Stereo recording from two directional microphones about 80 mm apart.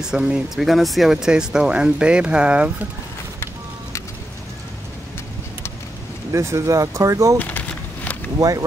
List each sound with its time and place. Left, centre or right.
0.0 s speech: centre
6.3 s speech: right
7.3 s a sound: centre
8.4 s speech: right